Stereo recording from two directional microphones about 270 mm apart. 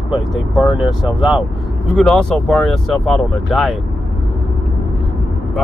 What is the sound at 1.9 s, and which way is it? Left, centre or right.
Speech, centre.